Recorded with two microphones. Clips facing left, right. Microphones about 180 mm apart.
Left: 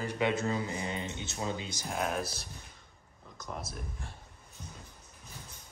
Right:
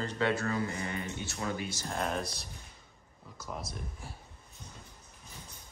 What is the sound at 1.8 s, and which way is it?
Speech, 5° left (ahead or behind).